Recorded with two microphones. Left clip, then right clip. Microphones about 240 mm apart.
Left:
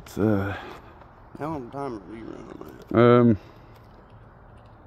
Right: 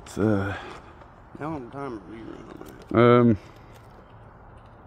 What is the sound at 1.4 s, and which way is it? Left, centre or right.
Speech, left.